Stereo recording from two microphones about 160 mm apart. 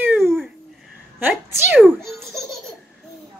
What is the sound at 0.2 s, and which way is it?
Babbling, centre (ahead or behind).